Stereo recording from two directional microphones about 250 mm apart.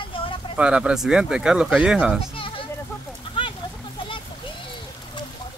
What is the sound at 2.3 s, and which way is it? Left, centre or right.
Sheep, left.